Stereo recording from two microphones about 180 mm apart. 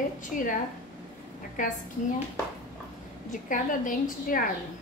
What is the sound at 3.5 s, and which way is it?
Speech, 50° left (ahead or behind).